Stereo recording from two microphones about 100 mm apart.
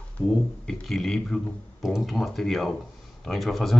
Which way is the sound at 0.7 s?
5° left (ahead or behind).